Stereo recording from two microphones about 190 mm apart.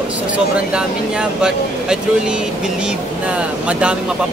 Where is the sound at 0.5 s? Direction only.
5° right (ahead or behind).